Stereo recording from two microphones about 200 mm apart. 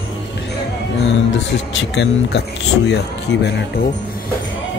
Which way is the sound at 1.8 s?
60° left (ahead or behind).